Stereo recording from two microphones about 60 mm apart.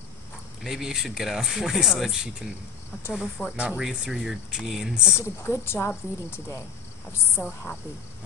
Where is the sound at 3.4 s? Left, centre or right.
Left.